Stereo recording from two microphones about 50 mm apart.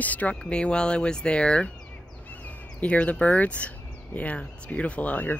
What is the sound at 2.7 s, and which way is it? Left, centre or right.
Speech, left.